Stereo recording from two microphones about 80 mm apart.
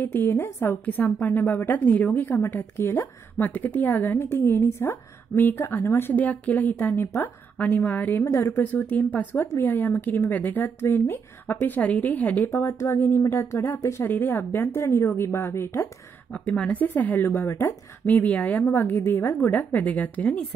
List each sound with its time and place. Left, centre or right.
0.0 s a woman's voice: left
12.5 s a woman's voice: left
16.4 s a woman's voice: centre
18.0 s a woman's voice: centre